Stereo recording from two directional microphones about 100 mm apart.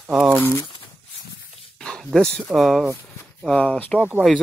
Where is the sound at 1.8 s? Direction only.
5° left (ahead or behind).